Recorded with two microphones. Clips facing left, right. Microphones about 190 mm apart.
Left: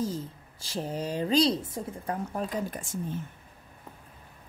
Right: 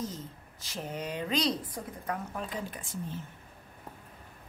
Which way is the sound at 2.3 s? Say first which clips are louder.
Left 5 dB; 45° left (ahead or behind).